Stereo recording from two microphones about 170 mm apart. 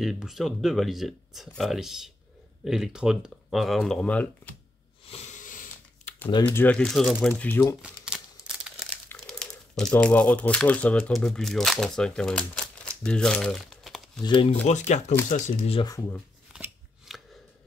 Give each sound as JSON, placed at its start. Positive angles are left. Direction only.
{"t": 0.0, "sound": "speech", "side_deg": 0}
{"t": 5.0, "sound": "a sound", "side_deg": 40}
{"t": 6.4, "sound": "speech", "side_deg": 10}
{"t": 7.8, "sound": "crumpling", "side_deg": -5}
{"t": 9.8, "sound": "speech", "side_deg": 5}
{"t": 14.2, "sound": "speech", "side_deg": 30}
{"t": 14.5, "sound": "speech", "side_deg": 45}
{"t": 16.5, "sound": "scissors", "side_deg": -5}